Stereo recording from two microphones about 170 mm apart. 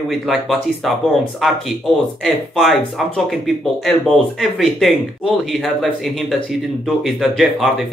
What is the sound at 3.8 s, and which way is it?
Speech, centre (ahead or behind).